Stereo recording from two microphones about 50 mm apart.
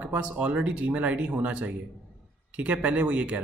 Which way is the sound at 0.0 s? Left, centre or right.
Right.